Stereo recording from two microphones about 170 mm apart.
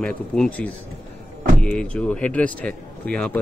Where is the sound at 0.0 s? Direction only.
5° left (ahead or behind).